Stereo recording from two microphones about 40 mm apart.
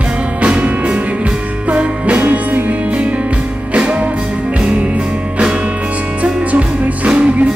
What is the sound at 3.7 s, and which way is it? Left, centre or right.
Music, right.